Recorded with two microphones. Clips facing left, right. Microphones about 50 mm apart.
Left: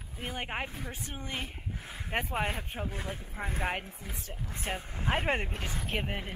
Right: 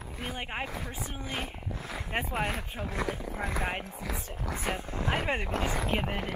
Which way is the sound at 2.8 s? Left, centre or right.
Right.